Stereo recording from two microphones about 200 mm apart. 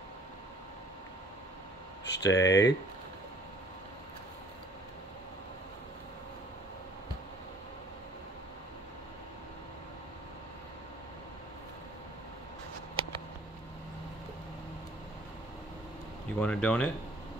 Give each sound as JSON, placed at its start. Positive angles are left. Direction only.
{"t": 2.0, "sound": "speech", "side_deg": 60}
{"t": 16.3, "sound": "speech", "side_deg": 5}